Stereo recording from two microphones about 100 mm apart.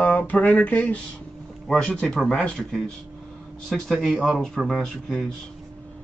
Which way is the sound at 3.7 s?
Centre (ahead or behind).